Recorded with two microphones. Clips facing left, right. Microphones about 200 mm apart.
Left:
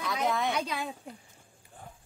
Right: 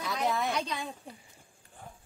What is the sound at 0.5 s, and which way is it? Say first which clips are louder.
Speech: left 1 dB; 10° left (ahead or behind).